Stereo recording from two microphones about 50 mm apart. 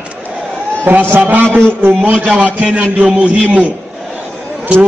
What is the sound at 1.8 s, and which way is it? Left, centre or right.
A man's voice, right.